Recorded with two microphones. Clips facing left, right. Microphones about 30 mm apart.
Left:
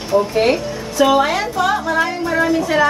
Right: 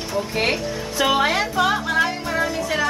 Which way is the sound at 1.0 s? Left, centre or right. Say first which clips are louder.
Left 5 dB; right.